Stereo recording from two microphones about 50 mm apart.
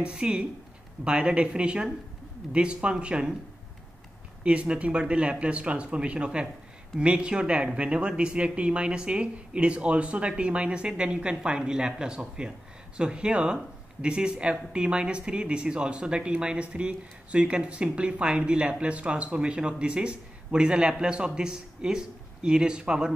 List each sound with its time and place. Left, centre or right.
0.0 s speech: centre
4.4 s speech: right